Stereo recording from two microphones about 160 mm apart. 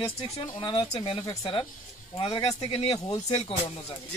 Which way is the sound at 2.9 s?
20° left (ahead or behind).